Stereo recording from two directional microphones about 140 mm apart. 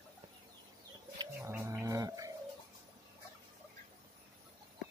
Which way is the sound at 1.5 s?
20° right (ahead or behind).